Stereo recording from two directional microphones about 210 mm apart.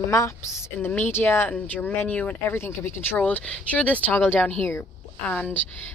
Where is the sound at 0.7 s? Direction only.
10° left (ahead or behind).